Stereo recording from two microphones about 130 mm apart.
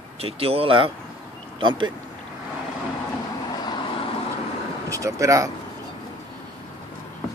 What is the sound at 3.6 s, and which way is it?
Vehicle, 35° left (ahead or behind).